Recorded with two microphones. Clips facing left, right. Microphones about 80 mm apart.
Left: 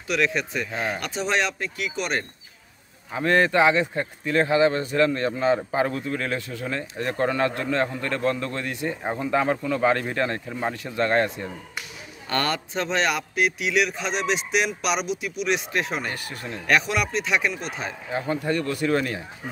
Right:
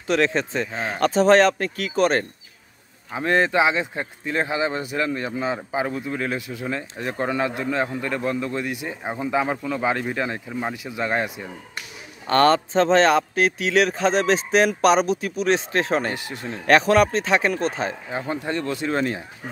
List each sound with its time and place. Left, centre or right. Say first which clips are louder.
0.0 s a man's voice: right 3 dB; right
0.9 s a man's voice: right 13 dB; right
3.1 s speech: even; centre
12.3 s a man's voice: right 9 dB; right
16.1 s speech: right 3 dB; right
16.6 s a man's voice: right 7 dB; right
18.1 s speech: left 6 dB; right